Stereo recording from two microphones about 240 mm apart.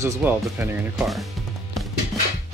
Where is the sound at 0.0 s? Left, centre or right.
Centre.